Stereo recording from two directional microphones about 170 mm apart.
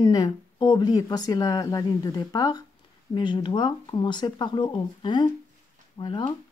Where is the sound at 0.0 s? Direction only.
25° left (ahead or behind).